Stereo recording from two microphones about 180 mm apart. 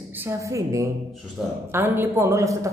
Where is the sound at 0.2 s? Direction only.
15° right (ahead or behind).